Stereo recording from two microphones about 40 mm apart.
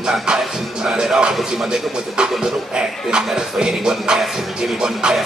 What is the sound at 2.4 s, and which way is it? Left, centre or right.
Speech, centre.